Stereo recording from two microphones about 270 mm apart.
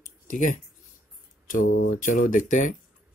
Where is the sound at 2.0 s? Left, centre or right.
Left.